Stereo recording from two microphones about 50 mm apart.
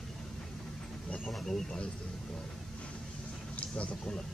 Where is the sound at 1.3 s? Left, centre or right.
Centre.